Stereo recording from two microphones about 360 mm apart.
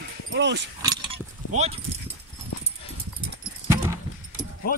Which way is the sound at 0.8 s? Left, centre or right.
Centre.